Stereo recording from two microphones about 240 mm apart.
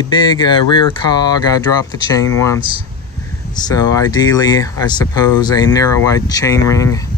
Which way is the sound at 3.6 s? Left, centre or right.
Centre.